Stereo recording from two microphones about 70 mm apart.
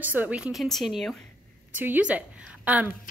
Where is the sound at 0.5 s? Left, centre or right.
Centre.